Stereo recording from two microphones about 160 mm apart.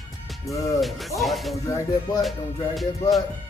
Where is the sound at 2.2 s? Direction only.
Centre (ahead or behind).